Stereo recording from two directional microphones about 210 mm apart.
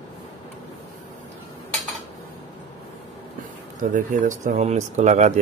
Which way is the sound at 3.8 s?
40° right (ahead or behind).